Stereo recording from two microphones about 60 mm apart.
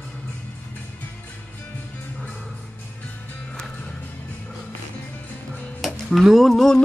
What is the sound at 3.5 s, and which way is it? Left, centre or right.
Music, centre.